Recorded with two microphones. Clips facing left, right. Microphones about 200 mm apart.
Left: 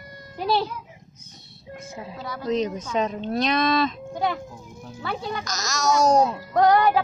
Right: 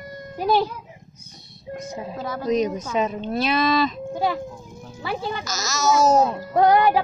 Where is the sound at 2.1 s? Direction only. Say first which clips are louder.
Right 5 dB; 50° right (ahead or behind).